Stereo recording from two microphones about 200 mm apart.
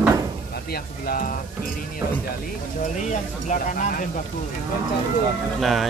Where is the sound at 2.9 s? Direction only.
40° left (ahead or behind).